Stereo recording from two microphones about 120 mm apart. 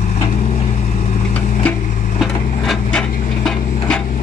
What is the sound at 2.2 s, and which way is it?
Wood, centre (ahead or behind).